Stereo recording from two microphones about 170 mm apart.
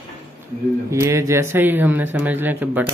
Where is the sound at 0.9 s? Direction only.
15° right (ahead or behind).